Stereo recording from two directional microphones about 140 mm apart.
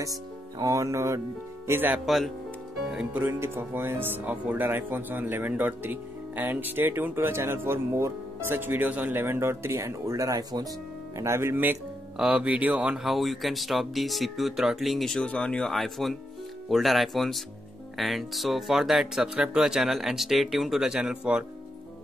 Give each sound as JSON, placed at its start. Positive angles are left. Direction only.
{"t": 0.0, "sound": "speech", "side_deg": -25}
{"t": 2.0, "sound": "speech", "side_deg": 0}